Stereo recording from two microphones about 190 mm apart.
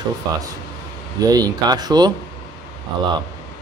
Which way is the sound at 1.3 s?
20° right (ahead or behind).